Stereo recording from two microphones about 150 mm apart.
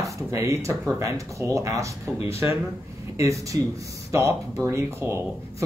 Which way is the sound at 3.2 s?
20° right (ahead or behind).